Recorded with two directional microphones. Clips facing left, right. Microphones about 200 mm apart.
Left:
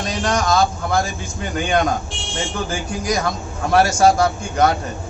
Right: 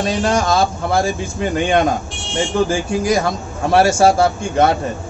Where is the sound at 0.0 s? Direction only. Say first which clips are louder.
Right 4 dB; 30° right (ahead or behind).